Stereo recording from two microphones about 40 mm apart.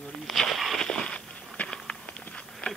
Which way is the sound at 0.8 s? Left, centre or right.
Centre.